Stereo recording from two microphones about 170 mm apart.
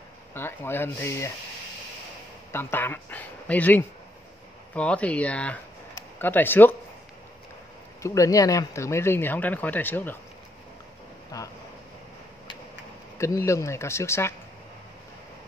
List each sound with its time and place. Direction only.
0.3 s speech: 15° left (ahead or behind)
2.5 s speech: 15° left (ahead or behind)
8.0 s speech: 20° left (ahead or behind)
11.3 s speech: 20° left (ahead or behind)
13.2 s speech: 15° left (ahead or behind)